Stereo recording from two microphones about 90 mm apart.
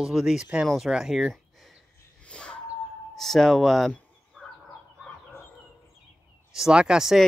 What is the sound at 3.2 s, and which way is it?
Speech, 5° left (ahead or behind).